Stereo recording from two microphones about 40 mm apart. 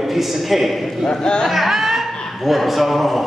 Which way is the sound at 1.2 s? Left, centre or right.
Left.